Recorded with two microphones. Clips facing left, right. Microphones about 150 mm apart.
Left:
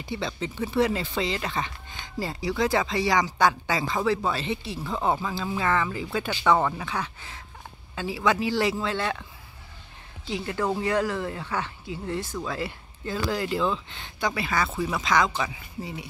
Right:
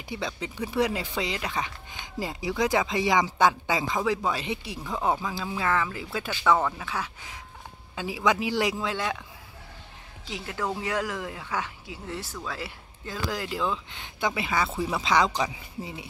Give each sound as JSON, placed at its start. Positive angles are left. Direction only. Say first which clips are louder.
{"t": 0.0, "sound": "speech", "louder": "left 2 dB", "side_deg": -10}
{"t": 10.3, "sound": "speech", "louder": "left 4 dB", "side_deg": 0}
{"t": 14.2, "sound": "speech", "louder": "even", "side_deg": -20}
{"t": 15.3, "sound": "speech", "louder": "right 1 dB", "side_deg": -20}